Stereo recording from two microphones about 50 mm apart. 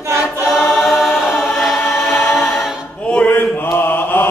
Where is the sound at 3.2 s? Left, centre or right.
Left.